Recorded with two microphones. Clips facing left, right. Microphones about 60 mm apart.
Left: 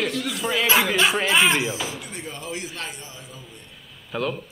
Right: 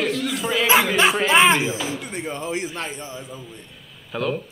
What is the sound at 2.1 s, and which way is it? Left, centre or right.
A man's voice, right.